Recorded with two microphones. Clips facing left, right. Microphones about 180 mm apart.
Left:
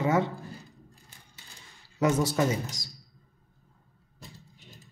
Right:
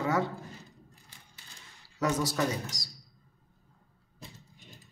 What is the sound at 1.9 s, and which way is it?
Speech, 25° left (ahead or behind).